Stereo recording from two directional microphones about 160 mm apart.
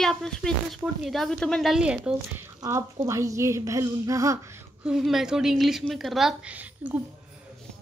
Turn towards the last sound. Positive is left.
turn(degrees=-10)  # may be behind; listen again after turning